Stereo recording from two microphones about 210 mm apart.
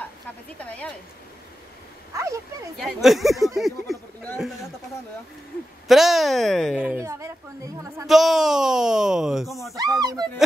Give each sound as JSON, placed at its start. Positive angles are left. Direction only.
{"t": 0.6, "sound": "a woman's voice", "side_deg": 5}
{"t": 2.1, "sound": "speech", "side_deg": -15}
{"t": 2.8, "sound": "speech", "side_deg": 0}
{"t": 5.9, "sound": "speech", "side_deg": 0}
{"t": 7.0, "sound": "speech", "side_deg": -10}
{"t": 8.1, "sound": "speech", "side_deg": 0}
{"t": 9.9, "sound": "speech", "side_deg": -20}